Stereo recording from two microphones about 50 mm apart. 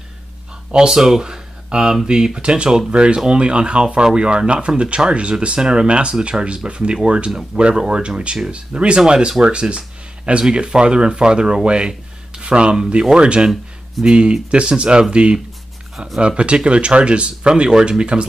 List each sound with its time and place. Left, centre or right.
0.7 s speech: centre